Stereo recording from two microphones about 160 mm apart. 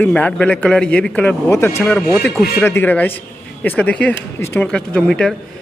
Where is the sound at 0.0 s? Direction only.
10° left (ahead or behind).